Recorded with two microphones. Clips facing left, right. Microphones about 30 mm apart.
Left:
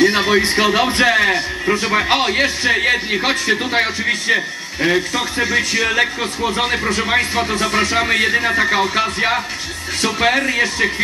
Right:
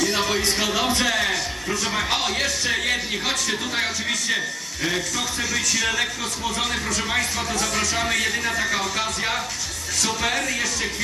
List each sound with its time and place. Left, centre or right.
0.0 s speech: left